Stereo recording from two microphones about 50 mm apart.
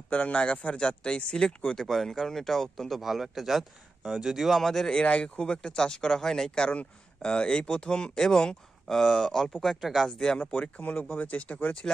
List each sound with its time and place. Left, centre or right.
0.1 s speech: left
0.5 s speech: centre
1.8 s speech: centre
5.0 s speech: left; by 10.0 s centre
10.0 s speech: centre
11.1 s speech: left